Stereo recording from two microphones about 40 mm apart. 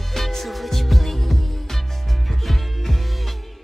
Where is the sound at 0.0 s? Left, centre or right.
Centre.